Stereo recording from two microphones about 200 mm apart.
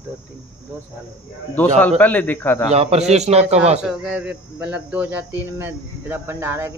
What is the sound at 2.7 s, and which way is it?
Speech, 30° right (ahead or behind).